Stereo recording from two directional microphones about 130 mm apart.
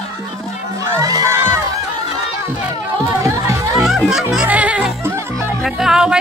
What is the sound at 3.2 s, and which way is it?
Music, 25° right (ahead or behind).